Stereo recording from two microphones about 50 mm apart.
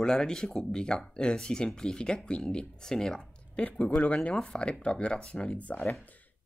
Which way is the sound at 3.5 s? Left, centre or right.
Left.